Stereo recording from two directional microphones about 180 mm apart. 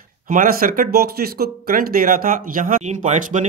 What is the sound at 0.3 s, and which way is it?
Speech, 50° right (ahead or behind).